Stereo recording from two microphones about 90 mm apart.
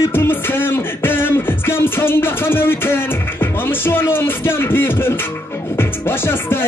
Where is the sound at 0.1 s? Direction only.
25° left (ahead or behind).